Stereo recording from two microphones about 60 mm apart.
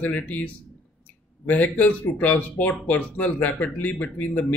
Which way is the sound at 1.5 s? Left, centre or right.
Left.